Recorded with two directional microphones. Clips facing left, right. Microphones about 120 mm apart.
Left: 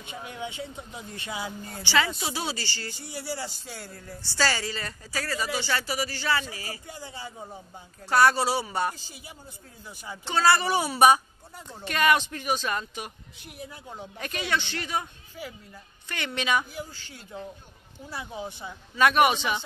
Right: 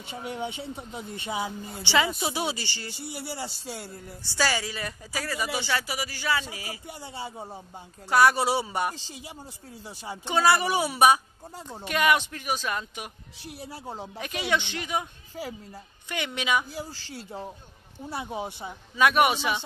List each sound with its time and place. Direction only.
0.1 s speech: 25° right (ahead or behind)
8.1 s speech: 10° right (ahead or behind)
8.5 s speech: 20° right (ahead or behind)
9.8 s speech: 30° right (ahead or behind)
10.2 s speech: 15° right (ahead or behind)
13.4 s speech: 35° right (ahead or behind)
14.1 s speech: 10° right (ahead or behind)
15.3 s speech: 35° right (ahead or behind)
16.1 s speech: 10° right (ahead or behind)
16.7 s speech: 30° right (ahead or behind)
18.9 s a man's voice: 5° right (ahead or behind)